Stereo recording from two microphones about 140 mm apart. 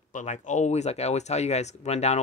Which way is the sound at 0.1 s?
60° left (ahead or behind).